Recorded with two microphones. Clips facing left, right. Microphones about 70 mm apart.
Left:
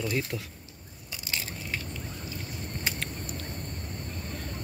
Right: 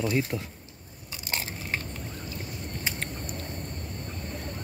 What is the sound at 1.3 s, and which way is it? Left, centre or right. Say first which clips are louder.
Crumpling: right 3 dB; right.